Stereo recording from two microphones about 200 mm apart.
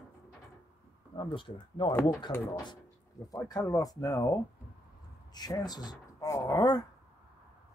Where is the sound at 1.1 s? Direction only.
25° left (ahead or behind).